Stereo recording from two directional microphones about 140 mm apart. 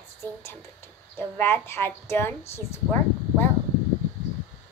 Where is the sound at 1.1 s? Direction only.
15° left (ahead or behind).